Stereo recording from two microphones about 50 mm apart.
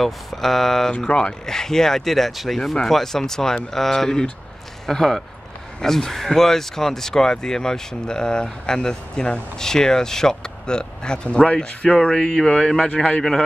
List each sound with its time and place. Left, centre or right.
0.0 s speech: centre
0.9 s speech: centre